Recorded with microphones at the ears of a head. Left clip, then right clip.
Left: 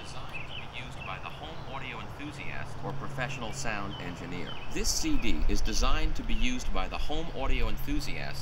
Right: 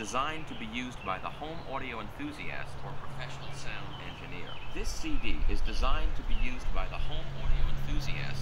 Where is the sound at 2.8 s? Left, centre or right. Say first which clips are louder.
Left 7 dB; left.